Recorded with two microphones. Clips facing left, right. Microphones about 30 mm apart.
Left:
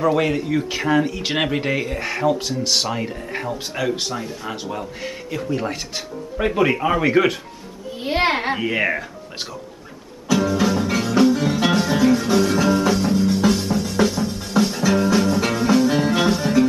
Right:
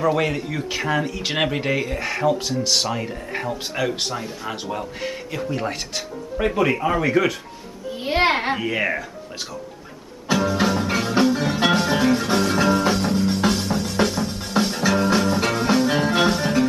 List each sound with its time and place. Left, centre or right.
0.0 s speech: centre
5.9 s speech: centre
8.0 s speech: centre
8.6 s speech: centre
10.3 s music: centre